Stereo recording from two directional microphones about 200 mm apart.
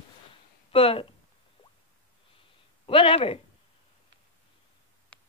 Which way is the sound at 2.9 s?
25° left (ahead or behind).